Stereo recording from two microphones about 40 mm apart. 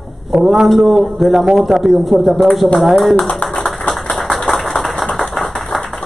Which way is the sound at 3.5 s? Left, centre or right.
Centre.